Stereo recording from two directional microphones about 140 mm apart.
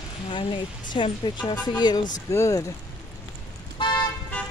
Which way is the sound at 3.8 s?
30° left (ahead or behind).